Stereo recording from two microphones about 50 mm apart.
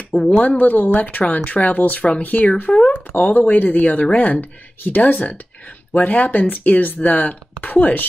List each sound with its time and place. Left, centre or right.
0.1 s speech: left
3.2 s speech: left